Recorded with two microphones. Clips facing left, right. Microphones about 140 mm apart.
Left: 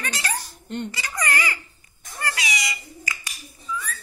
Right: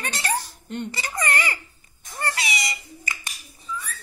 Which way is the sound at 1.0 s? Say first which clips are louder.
Right 1 dB; 25° right (ahead or behind).